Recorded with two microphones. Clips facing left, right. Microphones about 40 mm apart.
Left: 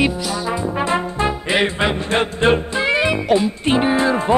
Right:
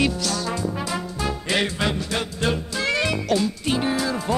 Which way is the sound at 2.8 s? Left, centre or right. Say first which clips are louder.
Left 5 dB; left.